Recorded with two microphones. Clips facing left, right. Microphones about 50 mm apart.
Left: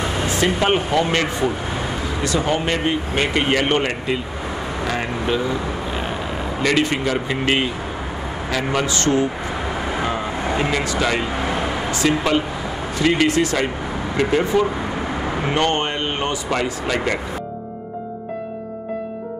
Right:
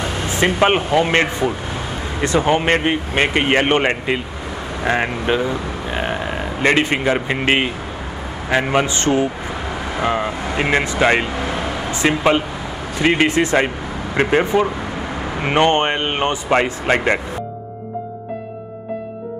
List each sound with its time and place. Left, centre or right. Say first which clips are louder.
0.3 s speech: right 4 dB; right
10.0 s vehicle: right 9 dB; right
10.6 s speech: right 6 dB; right
11.3 s vehicle: even; centre
11.9 s speech: right 3 dB; right